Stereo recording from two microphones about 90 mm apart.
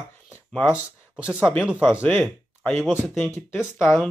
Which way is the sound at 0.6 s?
10° right (ahead or behind).